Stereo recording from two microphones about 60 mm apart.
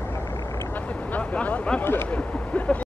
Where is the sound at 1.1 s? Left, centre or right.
Left.